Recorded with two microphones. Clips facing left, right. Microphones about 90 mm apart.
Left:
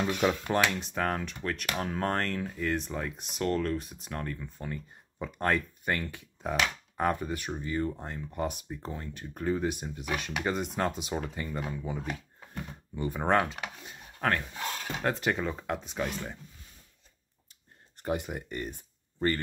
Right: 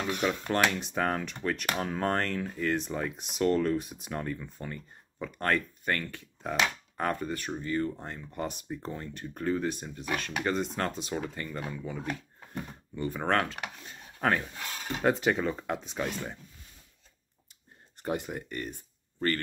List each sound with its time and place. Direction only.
0.5 s speech: centre (ahead or behind)
13.6 s a sound: 5° left (ahead or behind)
15.0 s speech: 5° right (ahead or behind)
18.0 s speech: 5° left (ahead or behind)